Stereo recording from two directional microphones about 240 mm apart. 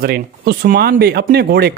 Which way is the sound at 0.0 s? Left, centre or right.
Right.